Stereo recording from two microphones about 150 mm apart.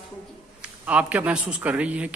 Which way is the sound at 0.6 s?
10° right (ahead or behind).